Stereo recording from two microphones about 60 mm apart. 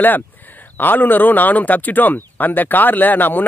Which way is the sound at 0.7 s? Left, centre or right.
Left.